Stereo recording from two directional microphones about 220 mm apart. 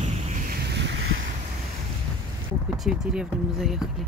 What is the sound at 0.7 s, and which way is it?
Boat, 50° right (ahead or behind).